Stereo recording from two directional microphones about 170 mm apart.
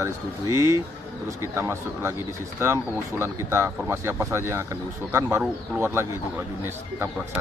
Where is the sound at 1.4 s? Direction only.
15° right (ahead or behind).